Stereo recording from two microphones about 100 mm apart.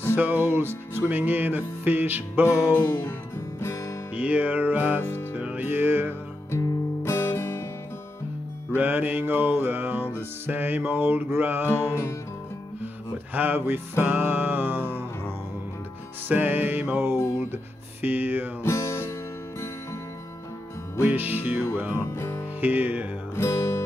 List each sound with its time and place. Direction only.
0.1 s music: 20° right (ahead or behind)
2.4 s music: 25° left (ahead or behind)
4.1 s music: 15° right (ahead or behind)
6.5 s music: 25° left (ahead or behind)
8.7 s music: 20° right (ahead or behind)
11.6 s music: 25° left (ahead or behind)
13.3 s music: 20° right (ahead or behind)
17.3 s a sound: 20° right (ahead or behind)
18.0 s music: 20° right (ahead or behind)
18.6 s music: 30° left (ahead or behind)
21.0 s music: 15° right (ahead or behind)
21.9 s music: 25° left (ahead or behind)
22.6 s music: 15° right (ahead or behind)
23.3 s music: 25° left (ahead or behind)